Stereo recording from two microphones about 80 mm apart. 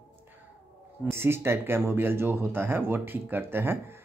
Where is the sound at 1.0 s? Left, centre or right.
Right.